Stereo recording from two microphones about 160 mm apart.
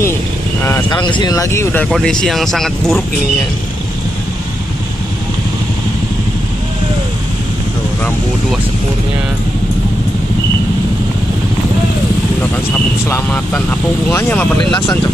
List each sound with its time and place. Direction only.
0.8 s speech: 30° left (ahead or behind)
1.9 s speech: centre (ahead or behind)
13.1 s speech: 10° left (ahead or behind)